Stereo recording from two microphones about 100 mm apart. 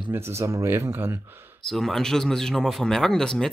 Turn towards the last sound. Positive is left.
turn(degrees=5)  # may be behind; listen again after turning